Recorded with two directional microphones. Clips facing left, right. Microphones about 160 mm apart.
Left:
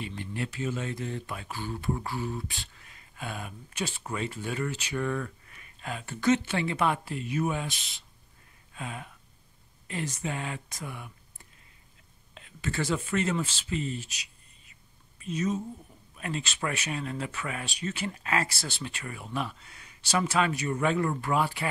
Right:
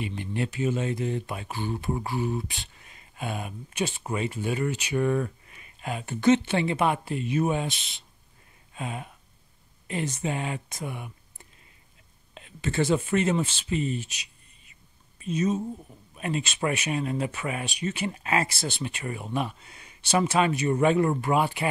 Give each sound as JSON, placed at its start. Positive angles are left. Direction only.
{"t": 0.0, "sound": "speech", "side_deg": -15}
{"t": 12.4, "sound": "speech", "side_deg": -20}